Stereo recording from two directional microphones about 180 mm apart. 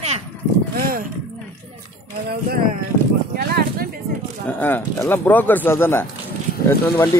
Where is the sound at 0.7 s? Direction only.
55° right (ahead or behind).